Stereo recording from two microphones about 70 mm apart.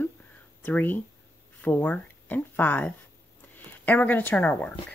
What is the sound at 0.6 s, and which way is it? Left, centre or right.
Speech, left.